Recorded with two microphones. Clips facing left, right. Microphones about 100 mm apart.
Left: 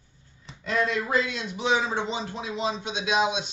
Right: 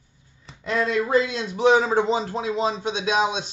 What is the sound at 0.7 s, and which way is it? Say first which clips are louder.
A man's voice: right 4 dB; 30° right (ahead or behind).